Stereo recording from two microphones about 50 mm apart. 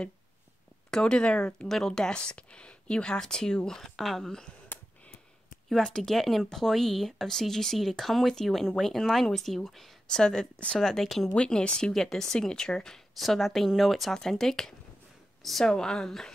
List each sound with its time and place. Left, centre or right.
0.8 s speech: centre
1.7 s speech: centre
4.7 s a sound: left
5.7 s speech: centre
10.0 s speech: centre
11.3 s speech: centre
11.9 s speech: centre
15.7 s speech: centre